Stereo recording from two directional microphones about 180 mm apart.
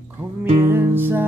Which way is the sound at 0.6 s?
15° right (ahead or behind).